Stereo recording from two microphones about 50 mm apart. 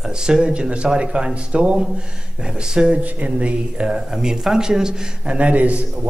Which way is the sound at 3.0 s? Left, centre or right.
Right.